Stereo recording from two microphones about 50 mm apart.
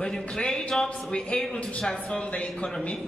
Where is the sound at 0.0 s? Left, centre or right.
Centre.